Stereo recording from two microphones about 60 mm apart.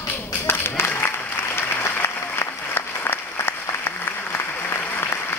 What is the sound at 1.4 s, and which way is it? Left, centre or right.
Applause, left.